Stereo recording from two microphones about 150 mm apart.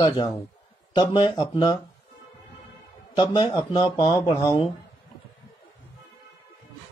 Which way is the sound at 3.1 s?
30° left (ahead or behind).